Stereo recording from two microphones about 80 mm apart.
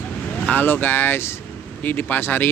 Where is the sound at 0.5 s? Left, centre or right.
Left.